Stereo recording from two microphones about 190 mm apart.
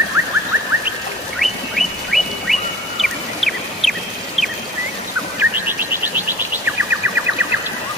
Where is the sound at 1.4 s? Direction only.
Centre (ahead or behind).